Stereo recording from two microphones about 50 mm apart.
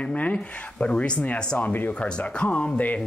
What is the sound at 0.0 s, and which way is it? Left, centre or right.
Speech, left.